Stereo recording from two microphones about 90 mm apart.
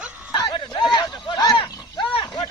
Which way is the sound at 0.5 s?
60° left (ahead or behind).